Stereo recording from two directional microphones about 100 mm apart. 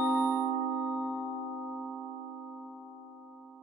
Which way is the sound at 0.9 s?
20° left (ahead or behind).